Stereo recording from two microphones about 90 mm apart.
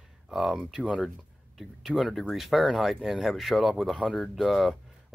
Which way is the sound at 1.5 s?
Centre (ahead or behind).